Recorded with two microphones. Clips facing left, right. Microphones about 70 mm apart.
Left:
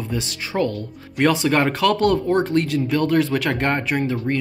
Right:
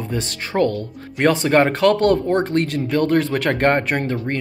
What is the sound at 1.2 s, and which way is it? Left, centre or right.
Speech, right.